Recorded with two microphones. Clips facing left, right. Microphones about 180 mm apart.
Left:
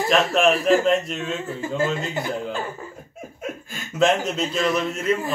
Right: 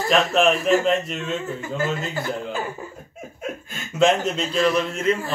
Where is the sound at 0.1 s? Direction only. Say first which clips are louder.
Right 1 dB; centre (ahead or behind).